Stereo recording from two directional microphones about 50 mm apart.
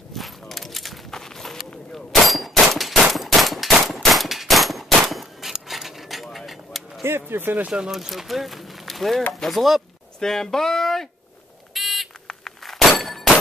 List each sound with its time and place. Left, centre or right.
0.1 s walk: centre
1.7 s a sound: centre
2.2 s a sound: centre
2.6 s machine gun: centre
4.0 s gunshot: centre
7.0 s speech: right
7.6 s speech: centre
7.9 s speech: centre
10.2 s speech: centre
11.7 s buzzer: centre
12.3 s a sound: centre